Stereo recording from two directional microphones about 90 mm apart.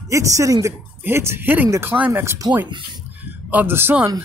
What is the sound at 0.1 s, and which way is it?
Speech, 35° right (ahead or behind).